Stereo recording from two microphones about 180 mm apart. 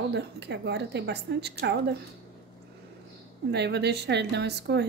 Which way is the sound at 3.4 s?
70° right (ahead or behind).